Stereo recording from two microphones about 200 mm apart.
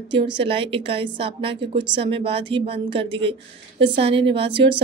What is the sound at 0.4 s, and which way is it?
A woman's voice, 25° right (ahead or behind).